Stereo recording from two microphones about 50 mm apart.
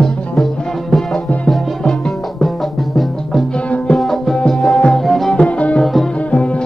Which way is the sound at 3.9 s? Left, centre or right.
Centre.